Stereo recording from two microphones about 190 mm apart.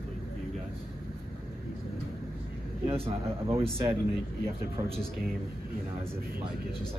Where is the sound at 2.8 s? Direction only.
30° right (ahead or behind).